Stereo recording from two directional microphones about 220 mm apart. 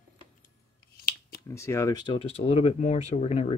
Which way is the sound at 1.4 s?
15° left (ahead or behind).